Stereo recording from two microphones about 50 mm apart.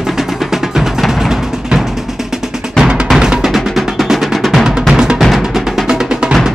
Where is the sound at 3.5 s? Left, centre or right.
Centre.